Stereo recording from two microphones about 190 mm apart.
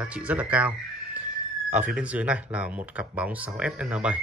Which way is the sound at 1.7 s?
5° right (ahead or behind).